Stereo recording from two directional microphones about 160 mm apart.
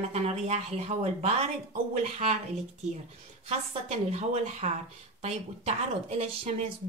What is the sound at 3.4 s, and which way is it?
A woman's voice, 40° right (ahead or behind).